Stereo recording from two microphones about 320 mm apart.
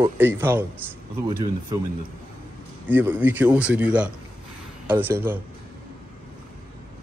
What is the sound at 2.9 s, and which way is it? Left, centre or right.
A man's voice, centre.